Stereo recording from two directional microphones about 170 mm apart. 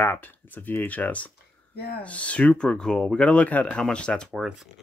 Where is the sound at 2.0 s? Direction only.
10° left (ahead or behind).